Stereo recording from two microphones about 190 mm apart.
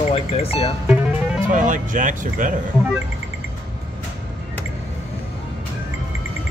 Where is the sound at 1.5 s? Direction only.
45° right (ahead or behind).